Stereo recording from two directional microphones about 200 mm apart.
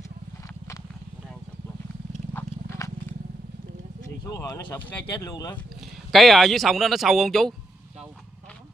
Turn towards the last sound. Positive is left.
turn(degrees=0)  # may be behind; listen again after turning